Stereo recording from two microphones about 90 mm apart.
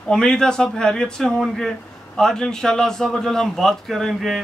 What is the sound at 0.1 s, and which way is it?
A man's voice, 5° left (ahead or behind).